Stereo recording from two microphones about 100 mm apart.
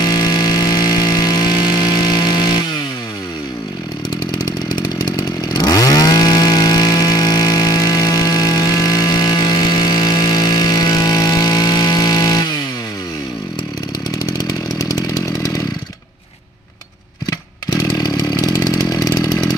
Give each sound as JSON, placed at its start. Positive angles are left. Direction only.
{"t": 0.0, "sound": "vehicle", "side_deg": 40}
{"t": 4.5, "sound": "chainsaw", "side_deg": 40}
{"t": 14.1, "sound": "chainsaw", "side_deg": 40}
{"t": 17.6, "sound": "chainsaw", "side_deg": 35}